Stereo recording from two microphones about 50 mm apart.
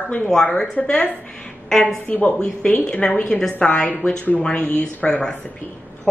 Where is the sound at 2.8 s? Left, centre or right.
Centre.